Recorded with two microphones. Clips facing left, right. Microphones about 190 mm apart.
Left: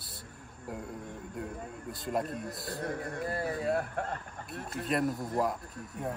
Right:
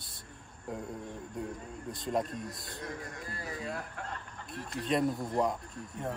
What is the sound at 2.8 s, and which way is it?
A man's voice, 55° left (ahead or behind).